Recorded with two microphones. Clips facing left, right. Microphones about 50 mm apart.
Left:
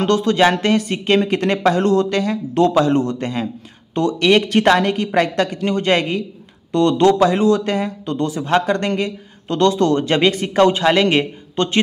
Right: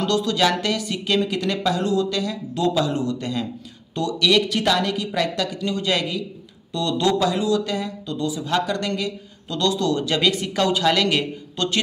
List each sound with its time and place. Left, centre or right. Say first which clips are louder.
0.0 s a woman's voice: left 6 dB; left